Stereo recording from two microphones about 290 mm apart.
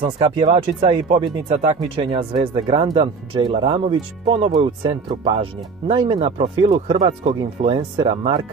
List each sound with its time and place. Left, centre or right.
0.0 s speech: centre